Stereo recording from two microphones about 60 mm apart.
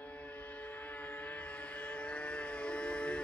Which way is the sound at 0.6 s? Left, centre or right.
Left.